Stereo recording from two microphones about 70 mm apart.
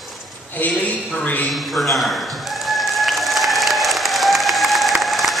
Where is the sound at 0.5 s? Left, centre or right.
Left.